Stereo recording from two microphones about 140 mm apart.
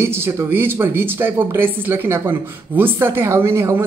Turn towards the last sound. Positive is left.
turn(degrees=-20)  # may be behind; listen again after turning